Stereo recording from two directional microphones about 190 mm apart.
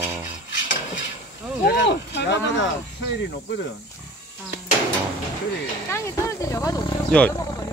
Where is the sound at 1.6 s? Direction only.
65° left (ahead or behind).